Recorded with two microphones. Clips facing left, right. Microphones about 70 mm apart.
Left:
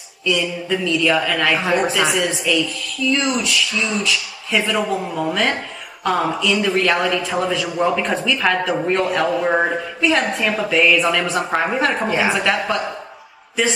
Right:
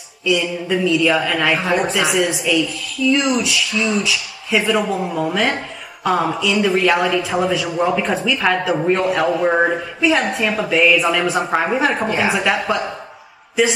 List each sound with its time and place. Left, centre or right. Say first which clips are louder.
0.2 s speech: right 2 dB; centre